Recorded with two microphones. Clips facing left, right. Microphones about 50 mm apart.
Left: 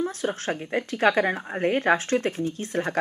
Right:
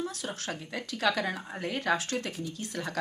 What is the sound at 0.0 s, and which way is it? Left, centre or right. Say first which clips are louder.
Speech: left 8 dB; left.